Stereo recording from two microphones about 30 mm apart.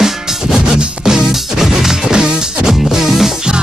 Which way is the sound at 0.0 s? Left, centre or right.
Centre.